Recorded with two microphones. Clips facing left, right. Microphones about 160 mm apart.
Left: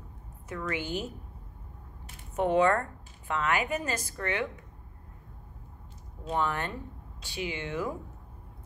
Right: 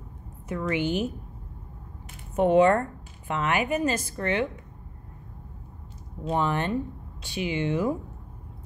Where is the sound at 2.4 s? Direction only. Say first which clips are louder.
Right 5 dB; 20° right (ahead or behind).